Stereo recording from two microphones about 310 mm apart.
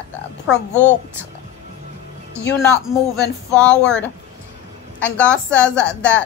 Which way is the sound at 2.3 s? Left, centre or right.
Centre.